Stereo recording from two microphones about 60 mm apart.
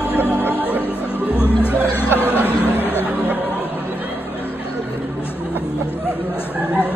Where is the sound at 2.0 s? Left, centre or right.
Left.